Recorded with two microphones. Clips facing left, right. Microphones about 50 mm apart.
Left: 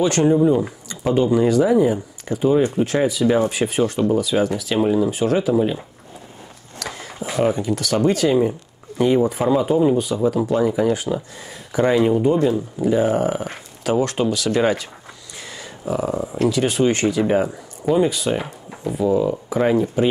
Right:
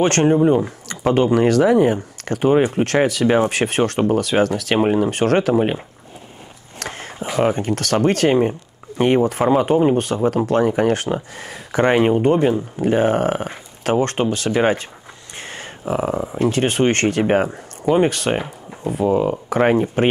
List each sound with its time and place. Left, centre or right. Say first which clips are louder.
0.0 s speech: right 1 dB; right
0.8 s speech: right 2 dB; right
4.7 s speech: right 1 dB; right
6.8 s a sound: right 1 dB; right
7.5 s speech: right 1 dB; right
15.3 s a sound: right 3 dB; right
16.4 s speech: right 1 dB; right
18.9 s speech: right 1 dB; right